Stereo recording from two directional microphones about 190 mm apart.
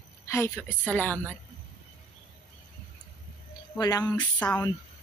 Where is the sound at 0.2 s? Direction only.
15° left (ahead or behind).